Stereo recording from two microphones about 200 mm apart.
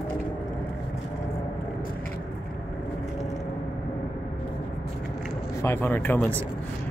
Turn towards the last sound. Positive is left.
turn(degrees=10)  # may be behind; listen again after turning